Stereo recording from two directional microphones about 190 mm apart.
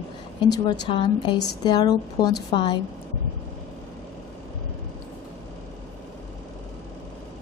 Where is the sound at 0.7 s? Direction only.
25° left (ahead or behind).